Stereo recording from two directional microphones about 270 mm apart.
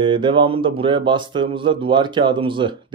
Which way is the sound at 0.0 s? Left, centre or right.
Centre.